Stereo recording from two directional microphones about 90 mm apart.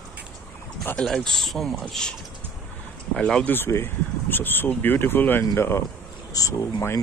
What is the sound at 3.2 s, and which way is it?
Speech, 10° left (ahead or behind).